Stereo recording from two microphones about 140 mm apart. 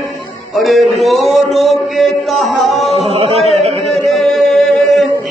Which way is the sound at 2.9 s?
45° right (ahead or behind).